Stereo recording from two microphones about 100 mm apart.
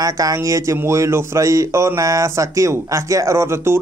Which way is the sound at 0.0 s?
35° right (ahead or behind).